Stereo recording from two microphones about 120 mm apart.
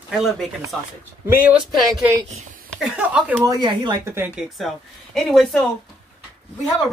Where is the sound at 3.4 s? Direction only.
35° right (ahead or behind).